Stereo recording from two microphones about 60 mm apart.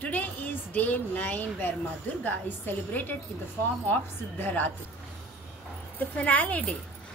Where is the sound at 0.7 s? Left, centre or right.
Left.